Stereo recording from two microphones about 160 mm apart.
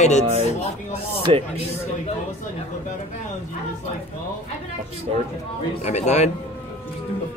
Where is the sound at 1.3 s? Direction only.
35° right (ahead or behind).